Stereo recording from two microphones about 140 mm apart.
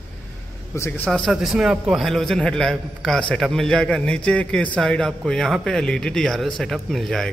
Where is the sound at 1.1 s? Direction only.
Centre (ahead or behind).